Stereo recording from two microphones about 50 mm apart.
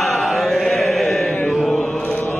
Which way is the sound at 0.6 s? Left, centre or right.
Centre.